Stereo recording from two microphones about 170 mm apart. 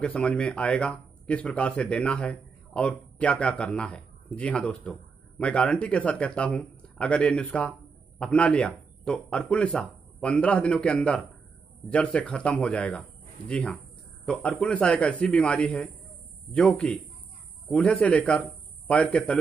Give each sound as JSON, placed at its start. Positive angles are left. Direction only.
{"t": 0.0, "sound": "speech", "side_deg": 5}